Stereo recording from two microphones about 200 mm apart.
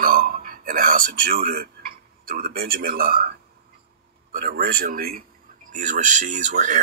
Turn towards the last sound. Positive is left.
turn(degrees=-40)  # may be behind; listen again after turning